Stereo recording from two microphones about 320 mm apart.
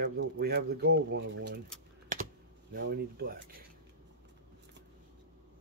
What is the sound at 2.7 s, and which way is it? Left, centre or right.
Speech, right.